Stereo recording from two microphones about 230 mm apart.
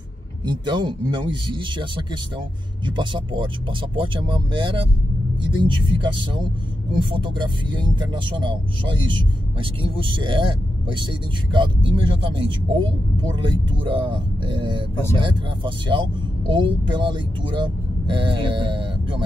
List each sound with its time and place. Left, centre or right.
0.5 s speech: centre